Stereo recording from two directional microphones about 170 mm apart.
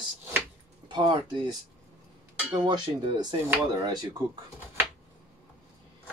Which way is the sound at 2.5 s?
25° right (ahead or behind).